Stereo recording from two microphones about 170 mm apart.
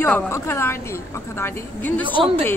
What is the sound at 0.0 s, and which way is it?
Speech, 15° left (ahead or behind).